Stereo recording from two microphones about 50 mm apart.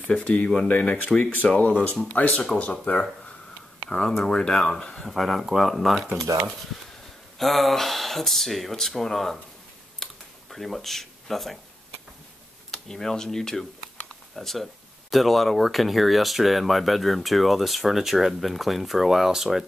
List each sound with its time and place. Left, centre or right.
0.2 s speech: left
2.4 s speech: centre
5.0 s speech: centre
6.2 s speech: right
7.3 s speech: centre
10.0 s computer keyboard: centre
10.5 s speech: centre
12.7 s speech: centre